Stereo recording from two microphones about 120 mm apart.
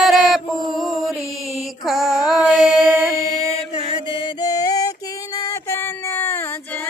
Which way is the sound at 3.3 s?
55° left (ahead or behind).